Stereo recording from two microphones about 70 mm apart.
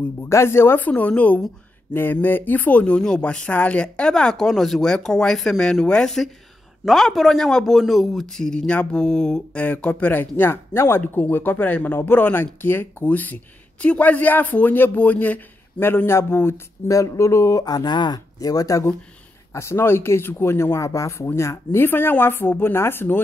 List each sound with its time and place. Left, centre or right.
0.2 s a man's voice: left
16.9 s speech: left
19.5 s speech: left
21.7 s speech: left